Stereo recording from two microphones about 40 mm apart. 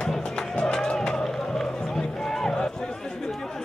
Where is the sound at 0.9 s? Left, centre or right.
Centre.